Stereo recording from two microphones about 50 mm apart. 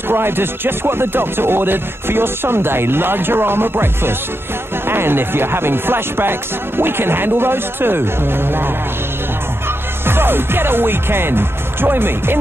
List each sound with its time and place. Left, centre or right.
0.1 s music: right
10.0 s music: right